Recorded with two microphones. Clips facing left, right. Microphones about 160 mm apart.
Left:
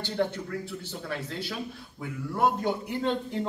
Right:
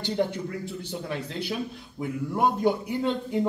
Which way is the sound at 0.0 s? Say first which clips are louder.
Right 2 dB; 15° right (ahead or behind).